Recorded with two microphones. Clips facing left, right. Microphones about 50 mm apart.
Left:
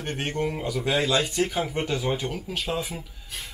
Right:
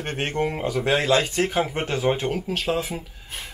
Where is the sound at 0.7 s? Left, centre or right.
Right.